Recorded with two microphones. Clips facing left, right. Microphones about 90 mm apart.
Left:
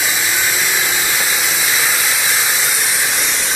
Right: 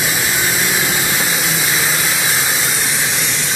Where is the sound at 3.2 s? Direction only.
15° left (ahead or behind).